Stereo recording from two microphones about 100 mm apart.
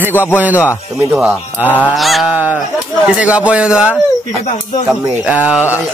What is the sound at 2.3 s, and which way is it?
Speech, 20° right (ahead or behind).